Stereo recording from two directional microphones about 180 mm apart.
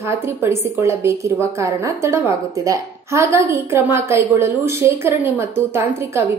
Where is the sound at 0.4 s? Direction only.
15° right (ahead or behind).